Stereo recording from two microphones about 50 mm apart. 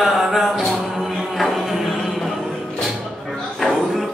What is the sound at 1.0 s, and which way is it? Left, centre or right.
Music, centre.